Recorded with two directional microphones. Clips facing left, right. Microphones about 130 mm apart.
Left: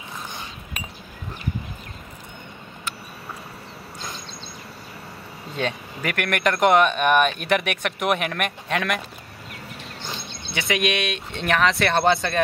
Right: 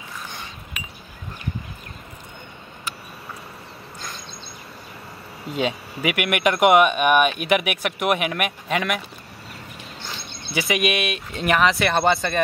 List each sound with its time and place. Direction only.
5.6 s speech: 10° right (ahead or behind)
10.5 s speech: 5° right (ahead or behind)